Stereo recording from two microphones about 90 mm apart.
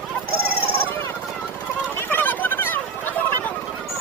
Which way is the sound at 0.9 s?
25° left (ahead or behind).